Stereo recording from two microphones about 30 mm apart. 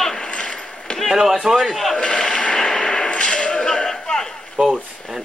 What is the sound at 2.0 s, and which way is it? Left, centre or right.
Speech, left.